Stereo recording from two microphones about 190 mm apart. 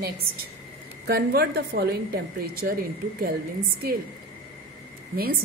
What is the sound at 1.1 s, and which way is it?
A woman's voice, 55° right (ahead or behind).